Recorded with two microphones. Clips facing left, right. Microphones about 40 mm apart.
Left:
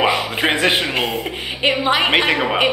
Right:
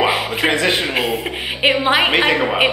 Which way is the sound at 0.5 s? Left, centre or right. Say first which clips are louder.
Left 1 dB; centre.